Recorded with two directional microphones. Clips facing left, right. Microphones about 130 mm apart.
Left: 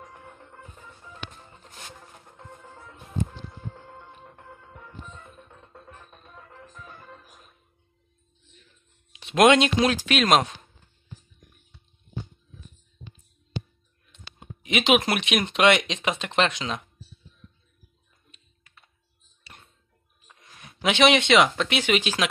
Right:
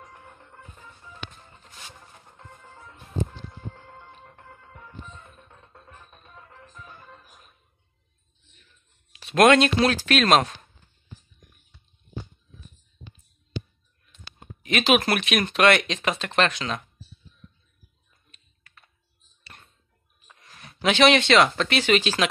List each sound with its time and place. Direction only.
0.0 s music: 10° left (ahead or behind)
9.2 s speech: 15° left (ahead or behind)
14.4 s speech: 15° left (ahead or behind)
19.4 s hands: 15° left (ahead or behind)
20.2 s a sound: 10° left (ahead or behind)
21.5 s speech: 15° left (ahead or behind)